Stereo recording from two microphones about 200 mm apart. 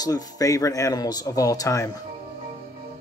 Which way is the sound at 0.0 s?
20° left (ahead or behind).